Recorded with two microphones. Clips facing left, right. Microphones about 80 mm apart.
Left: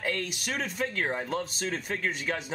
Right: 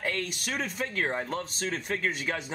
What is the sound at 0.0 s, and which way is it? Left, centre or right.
Speech, centre.